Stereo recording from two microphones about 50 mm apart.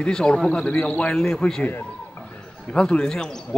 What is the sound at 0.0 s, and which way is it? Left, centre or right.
A man's voice, centre.